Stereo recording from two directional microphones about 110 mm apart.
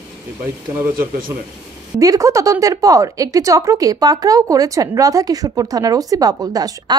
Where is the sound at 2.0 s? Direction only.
30° right (ahead or behind).